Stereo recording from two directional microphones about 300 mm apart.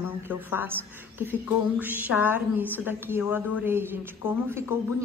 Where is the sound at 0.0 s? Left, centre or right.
Centre.